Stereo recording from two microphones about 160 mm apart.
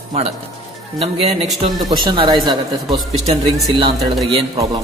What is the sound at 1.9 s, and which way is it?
Speech, 30° right (ahead or behind).